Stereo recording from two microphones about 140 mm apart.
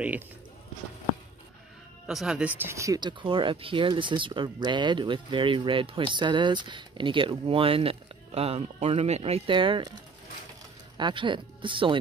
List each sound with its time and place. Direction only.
2.0 s speech: centre (ahead or behind)
2.7 s speech: 20° right (ahead or behind)
11.0 s speech: 35° right (ahead or behind)